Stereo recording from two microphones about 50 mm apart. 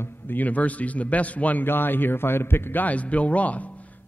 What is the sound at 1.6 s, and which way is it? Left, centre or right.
A man's voice, left.